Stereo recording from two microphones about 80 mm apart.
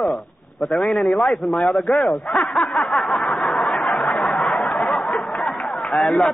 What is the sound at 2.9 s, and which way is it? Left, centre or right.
Snicker, centre.